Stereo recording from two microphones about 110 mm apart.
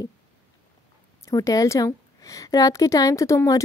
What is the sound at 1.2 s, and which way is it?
A woman's voice, 30° left (ahead or behind).